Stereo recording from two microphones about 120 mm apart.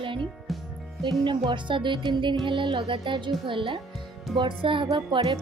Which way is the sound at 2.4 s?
45° right (ahead or behind).